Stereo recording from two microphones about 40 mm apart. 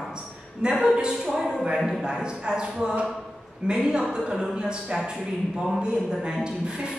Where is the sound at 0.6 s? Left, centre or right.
Right.